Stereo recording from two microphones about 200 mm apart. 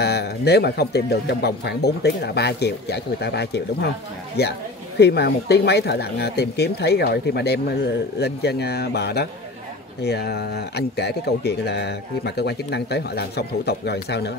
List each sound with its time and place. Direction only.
0.0 s speech: 55° left (ahead or behind)